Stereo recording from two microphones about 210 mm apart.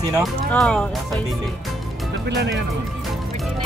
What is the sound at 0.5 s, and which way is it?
Speech, 5° left (ahead or behind).